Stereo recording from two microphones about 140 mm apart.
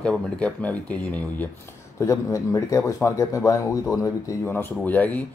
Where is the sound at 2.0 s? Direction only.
20° left (ahead or behind).